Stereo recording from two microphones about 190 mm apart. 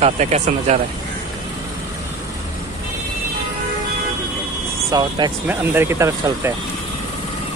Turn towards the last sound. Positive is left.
turn(degrees=-15)  # may be behind; listen again after turning